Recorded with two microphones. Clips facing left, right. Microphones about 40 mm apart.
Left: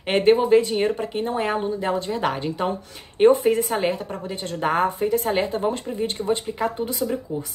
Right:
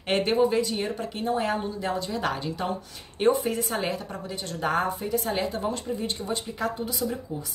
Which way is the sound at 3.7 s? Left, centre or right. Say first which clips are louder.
Left 5 dB; left.